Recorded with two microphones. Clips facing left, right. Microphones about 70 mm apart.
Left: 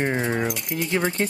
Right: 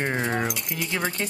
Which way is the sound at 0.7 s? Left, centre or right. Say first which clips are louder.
Left 4 dB; left.